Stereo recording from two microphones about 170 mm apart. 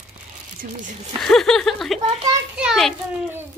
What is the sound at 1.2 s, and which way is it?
A woman's voice, centre (ahead or behind).